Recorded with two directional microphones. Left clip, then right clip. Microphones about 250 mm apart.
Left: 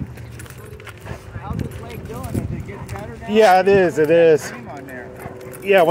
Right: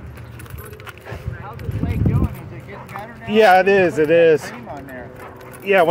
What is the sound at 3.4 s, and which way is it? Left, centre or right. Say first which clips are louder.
Speech: right 1 dB; centre.